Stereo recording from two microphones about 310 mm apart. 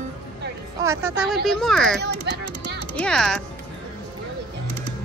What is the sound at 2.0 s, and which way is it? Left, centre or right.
Speech, right.